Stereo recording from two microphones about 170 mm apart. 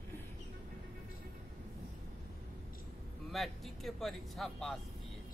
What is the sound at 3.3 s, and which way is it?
Speech, centre (ahead or behind).